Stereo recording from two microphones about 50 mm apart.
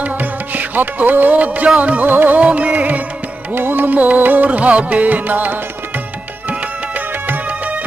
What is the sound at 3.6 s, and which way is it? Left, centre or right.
Music, right.